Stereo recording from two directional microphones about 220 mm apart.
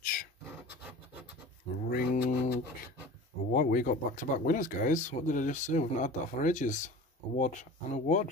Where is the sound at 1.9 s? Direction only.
45° left (ahead or behind).